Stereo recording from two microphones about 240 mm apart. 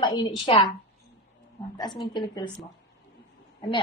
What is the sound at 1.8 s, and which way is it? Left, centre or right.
Speech, centre.